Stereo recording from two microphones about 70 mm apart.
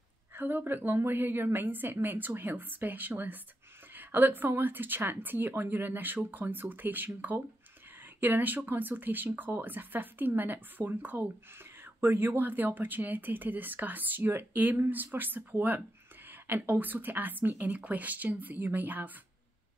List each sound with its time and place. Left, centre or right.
0.3 s speech: right
8.2 s speech: right